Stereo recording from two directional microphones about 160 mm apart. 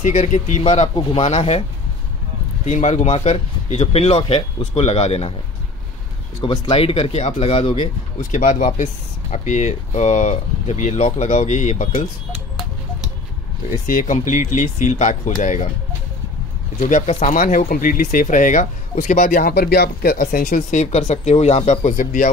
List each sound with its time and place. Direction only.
0.0 s speech: 50° left (ahead or behind)
2.6 s speech: 45° left (ahead or behind)
6.4 s speech: 30° left (ahead or behind)
8.2 s speech: 50° left (ahead or behind)
13.8 s speech: 55° left (ahead or behind)
16.8 s speech: 45° left (ahead or behind)
20.8 s speech: 45° left (ahead or behind)